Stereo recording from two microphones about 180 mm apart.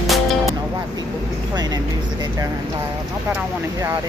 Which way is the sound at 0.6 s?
20° right (ahead or behind).